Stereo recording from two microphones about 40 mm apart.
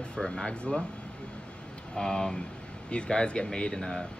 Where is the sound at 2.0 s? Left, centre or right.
Centre.